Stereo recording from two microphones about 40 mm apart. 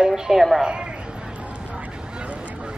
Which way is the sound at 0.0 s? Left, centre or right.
Centre.